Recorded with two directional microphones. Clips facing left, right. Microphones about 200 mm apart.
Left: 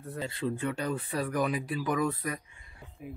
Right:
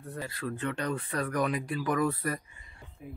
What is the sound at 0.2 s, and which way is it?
Speech, 25° left (ahead or behind).